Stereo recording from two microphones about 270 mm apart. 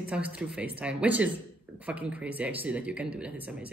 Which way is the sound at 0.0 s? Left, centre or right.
Centre.